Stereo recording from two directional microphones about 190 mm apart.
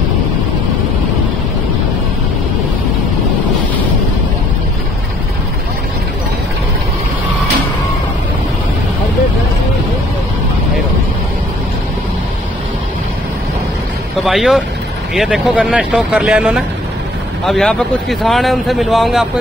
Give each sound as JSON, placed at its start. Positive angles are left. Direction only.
{"t": 14.1, "sound": "speech", "side_deg": 0}